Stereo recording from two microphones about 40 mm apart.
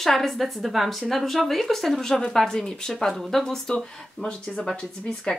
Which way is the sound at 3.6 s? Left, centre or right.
Centre.